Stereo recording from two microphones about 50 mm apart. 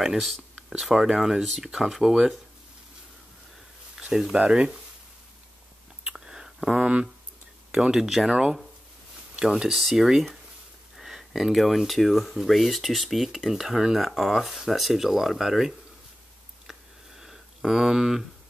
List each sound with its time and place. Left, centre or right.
0.0 s speech: centre
3.9 s a sound: centre
4.4 s speech: centre
6.0 s whispering: centre
6.8 s speech: right; by 15.7 s centre
17.2 s a sound: centre